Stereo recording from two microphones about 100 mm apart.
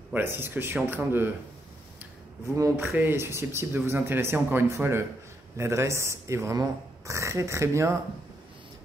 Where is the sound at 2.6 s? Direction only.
35° right (ahead or behind).